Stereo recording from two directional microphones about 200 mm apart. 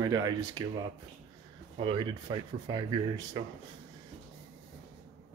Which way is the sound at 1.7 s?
25° right (ahead or behind).